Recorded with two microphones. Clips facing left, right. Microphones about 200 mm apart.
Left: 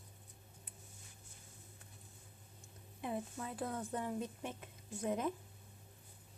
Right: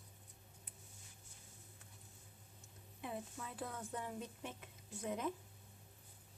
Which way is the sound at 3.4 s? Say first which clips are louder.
Left 5 dB; 45° left (ahead or behind).